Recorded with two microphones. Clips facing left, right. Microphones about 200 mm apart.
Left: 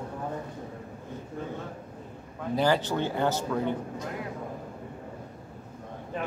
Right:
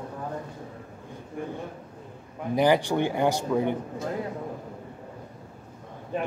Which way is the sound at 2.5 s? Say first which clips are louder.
Right 4 dB; 15° right (ahead or behind).